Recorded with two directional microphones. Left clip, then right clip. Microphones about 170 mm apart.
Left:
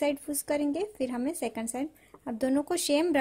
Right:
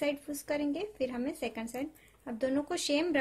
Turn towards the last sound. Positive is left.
turn(degrees=60)  # may be behind; listen again after turning